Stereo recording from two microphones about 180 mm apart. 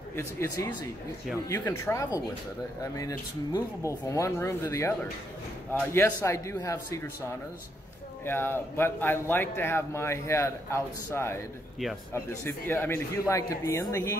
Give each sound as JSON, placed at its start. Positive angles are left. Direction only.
{"t": 0.1, "sound": "speech", "side_deg": 15}
{"t": 8.3, "sound": "speech", "side_deg": 10}